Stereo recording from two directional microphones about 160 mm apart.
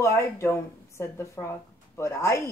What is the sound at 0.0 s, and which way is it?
A woman's voice, 15° left (ahead or behind).